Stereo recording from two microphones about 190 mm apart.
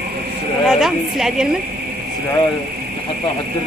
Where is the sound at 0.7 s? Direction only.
Centre (ahead or behind).